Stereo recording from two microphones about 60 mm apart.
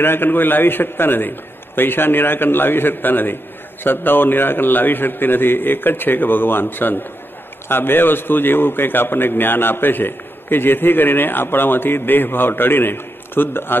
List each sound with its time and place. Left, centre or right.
0.0 s a man's voice: left